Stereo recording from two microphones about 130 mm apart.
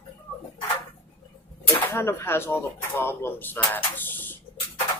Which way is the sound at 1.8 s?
15° left (ahead or behind).